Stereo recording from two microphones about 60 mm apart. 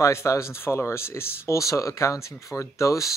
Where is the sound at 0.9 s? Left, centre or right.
Left.